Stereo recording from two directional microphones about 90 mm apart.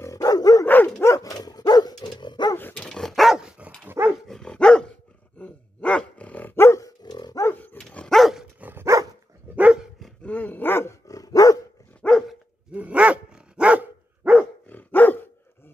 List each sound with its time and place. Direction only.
0.0 s dog: 40° left (ahead or behind)
0.7 s dog: 20° left (ahead or behind)
1.0 s dog: 40° left (ahead or behind); by 2.5 s 55° left (ahead or behind)
2.7 s dog: 10° left (ahead or behind); by 3.7 s 10° right (ahead or behind)
3.8 s dog: 25° right (ahead or behind)
4.3 s dog: 5° left (ahead or behind); by 6.9 s 30° left (ahead or behind)
7.0 s dog: 50° left (ahead or behind)
7.4 s dog: 20° left (ahead or behind)
7.9 s dog: 5° left (ahead or behind)
8.5 s dog: 20° right (ahead or behind)
10.2 s dog: 15° left (ahead or behind); by 11.6 s 40° left (ahead or behind)
12.0 s dog: 5° left (ahead or behind)
12.7 s dog: 15° right (ahead or behind)
14.7 s dog: 20° left (ahead or behind)